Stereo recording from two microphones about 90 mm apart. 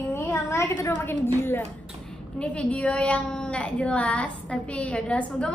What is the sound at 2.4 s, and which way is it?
A woman's voice, 15° left (ahead or behind).